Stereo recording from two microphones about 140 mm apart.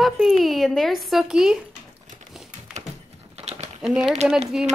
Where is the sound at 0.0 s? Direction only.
Centre (ahead or behind).